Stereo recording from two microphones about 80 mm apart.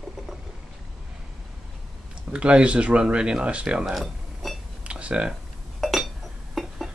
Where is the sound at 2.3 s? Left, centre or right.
Centre.